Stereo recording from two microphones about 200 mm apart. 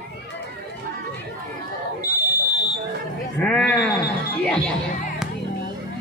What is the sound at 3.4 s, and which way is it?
Speech, 5° left (ahead or behind).